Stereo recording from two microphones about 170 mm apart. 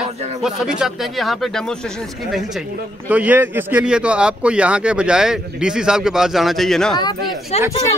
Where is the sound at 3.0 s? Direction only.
10° right (ahead or behind).